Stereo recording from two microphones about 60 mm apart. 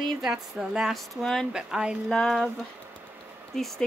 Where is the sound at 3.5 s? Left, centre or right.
Centre.